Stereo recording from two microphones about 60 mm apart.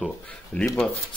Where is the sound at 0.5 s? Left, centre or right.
Left.